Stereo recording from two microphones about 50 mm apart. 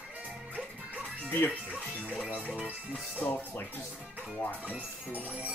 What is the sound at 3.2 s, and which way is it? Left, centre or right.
Speech, left.